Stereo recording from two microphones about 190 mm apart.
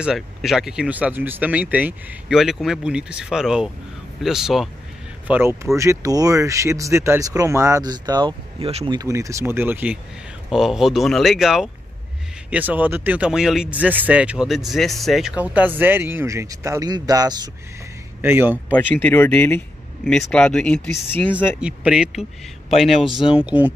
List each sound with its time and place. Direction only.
0.0 s speech: centre (ahead or behind)
18.7 s speech: 10° left (ahead or behind)
21.5 s speech: 5° right (ahead or behind)